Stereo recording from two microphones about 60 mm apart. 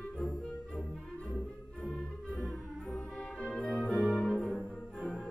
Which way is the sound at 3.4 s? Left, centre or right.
Centre.